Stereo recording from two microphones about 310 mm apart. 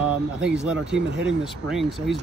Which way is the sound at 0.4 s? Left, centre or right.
Centre.